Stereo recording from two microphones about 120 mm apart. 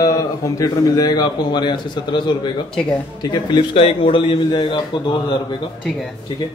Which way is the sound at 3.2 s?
40° left (ahead or behind).